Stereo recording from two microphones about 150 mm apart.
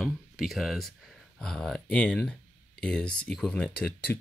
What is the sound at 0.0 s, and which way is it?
Speech, centre (ahead or behind).